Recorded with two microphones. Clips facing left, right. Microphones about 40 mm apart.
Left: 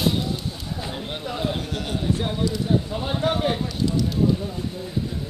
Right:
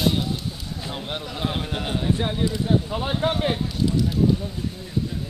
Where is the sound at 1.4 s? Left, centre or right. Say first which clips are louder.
Even; right.